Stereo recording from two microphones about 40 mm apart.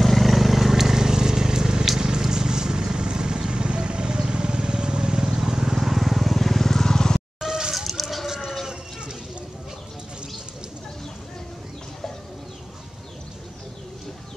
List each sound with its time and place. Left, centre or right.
0.0 s vehicle: centre
7.3 s vehicle: centre
7.7 s chicken: centre